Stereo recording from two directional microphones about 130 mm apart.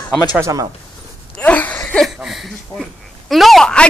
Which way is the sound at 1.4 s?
10° left (ahead or behind).